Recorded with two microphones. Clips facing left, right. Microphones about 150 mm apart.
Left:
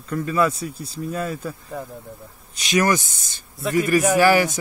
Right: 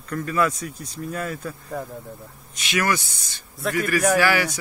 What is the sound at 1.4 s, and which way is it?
Speech, 5° left (ahead or behind).